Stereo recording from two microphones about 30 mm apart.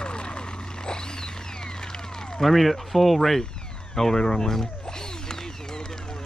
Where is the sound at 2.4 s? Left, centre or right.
Centre.